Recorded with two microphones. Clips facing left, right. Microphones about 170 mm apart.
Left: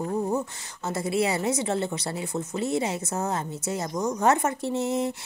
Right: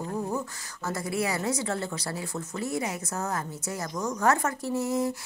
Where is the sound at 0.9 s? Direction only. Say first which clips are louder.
Left 4 dB; 25° left (ahead or behind).